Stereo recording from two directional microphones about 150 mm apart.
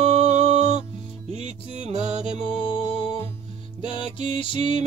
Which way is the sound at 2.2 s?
35° left (ahead or behind).